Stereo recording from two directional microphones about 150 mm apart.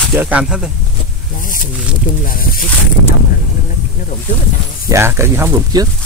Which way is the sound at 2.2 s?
70° left (ahead or behind).